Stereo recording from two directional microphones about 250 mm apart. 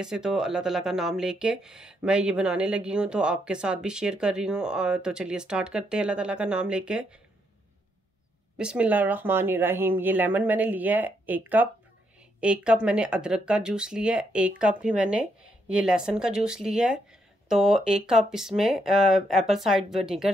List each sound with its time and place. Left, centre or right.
0.0 s speech: centre
8.5 s speech: centre